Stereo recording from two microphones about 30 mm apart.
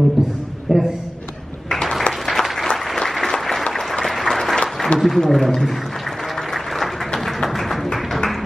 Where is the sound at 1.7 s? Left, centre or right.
Centre.